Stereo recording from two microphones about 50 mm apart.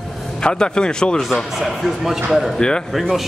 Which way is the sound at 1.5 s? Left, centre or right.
Centre.